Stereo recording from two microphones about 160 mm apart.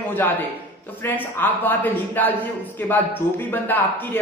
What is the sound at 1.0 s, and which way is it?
A man's voice, 10° left (ahead or behind).